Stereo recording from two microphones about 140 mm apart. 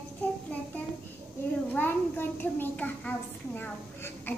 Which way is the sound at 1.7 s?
15° left (ahead or behind).